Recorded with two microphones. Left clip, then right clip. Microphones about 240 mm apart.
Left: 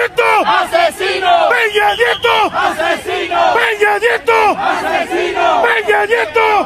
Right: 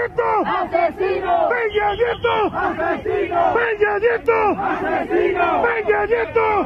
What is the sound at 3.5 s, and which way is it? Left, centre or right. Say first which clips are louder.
Crowd: left 6 dB; left.